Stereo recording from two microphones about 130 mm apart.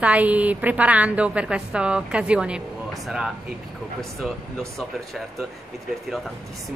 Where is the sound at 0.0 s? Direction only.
10° right (ahead or behind).